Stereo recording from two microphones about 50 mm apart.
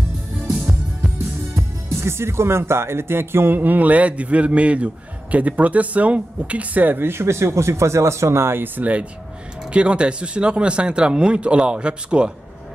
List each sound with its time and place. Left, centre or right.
1.5 s speech: right
7.0 s speech: right
8.7 s speech: right